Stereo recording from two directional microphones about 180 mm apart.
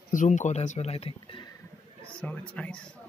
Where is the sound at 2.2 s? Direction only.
5° left (ahead or behind).